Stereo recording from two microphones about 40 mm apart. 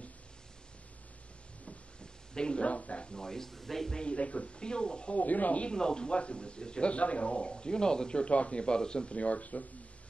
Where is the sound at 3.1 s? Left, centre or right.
Centre.